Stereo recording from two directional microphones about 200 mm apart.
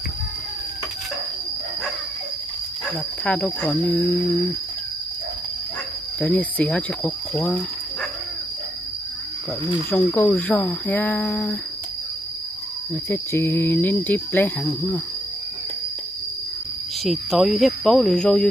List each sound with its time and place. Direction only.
3.3 s cricket: 10° left (ahead or behind)
6.1 s speech: 5° left (ahead or behind)
9.8 s cricket: 10° left (ahead or behind)
13.1 s cricket: 10° left (ahead or behind)
17.0 s speech: centre (ahead or behind)